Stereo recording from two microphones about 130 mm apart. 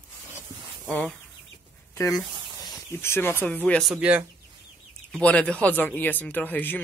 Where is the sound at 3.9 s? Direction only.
10° right (ahead or behind).